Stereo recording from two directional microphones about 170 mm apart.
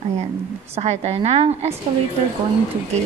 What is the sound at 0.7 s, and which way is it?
A woman's voice, 40° right (ahead or behind).